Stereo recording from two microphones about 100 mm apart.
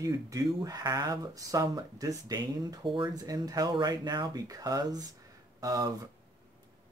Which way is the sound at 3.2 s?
40° right (ahead or behind).